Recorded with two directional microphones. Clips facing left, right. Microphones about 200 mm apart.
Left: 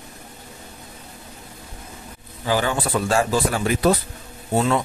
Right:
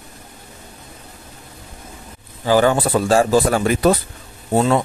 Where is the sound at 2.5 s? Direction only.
40° right (ahead or behind).